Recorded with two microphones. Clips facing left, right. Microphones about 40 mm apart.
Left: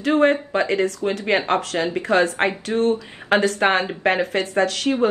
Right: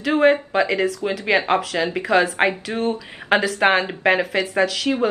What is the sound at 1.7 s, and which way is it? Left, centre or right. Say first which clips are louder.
Speech: left 1 dB; centre.